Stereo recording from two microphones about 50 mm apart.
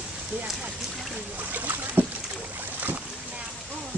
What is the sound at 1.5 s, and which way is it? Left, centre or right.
Boat, right.